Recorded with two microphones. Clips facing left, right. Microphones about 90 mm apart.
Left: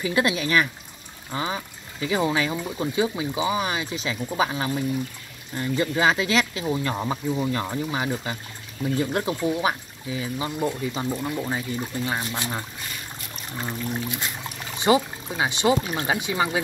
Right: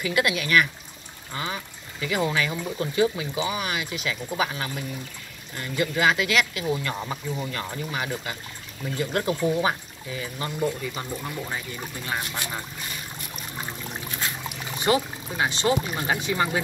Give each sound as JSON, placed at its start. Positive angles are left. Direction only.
{"t": 0.0, "sound": "speech", "side_deg": 30}
{"t": 7.0, "sound": "speech", "side_deg": 20}
{"t": 9.1, "sound": "speech", "side_deg": 10}
{"t": 14.8, "sound": "speech", "side_deg": 15}